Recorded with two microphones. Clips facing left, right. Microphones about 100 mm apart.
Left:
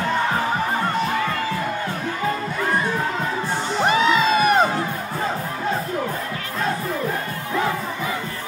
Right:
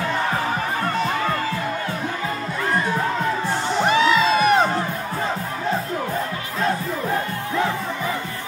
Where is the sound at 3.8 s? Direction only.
Centre (ahead or behind).